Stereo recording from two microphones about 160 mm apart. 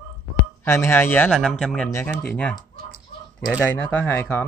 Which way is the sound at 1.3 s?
Centre (ahead or behind).